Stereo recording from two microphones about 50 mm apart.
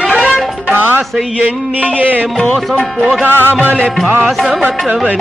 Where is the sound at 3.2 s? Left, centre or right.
Right.